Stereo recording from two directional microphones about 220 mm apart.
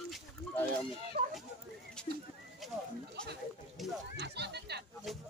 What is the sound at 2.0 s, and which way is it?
Speech, 5° left (ahead or behind).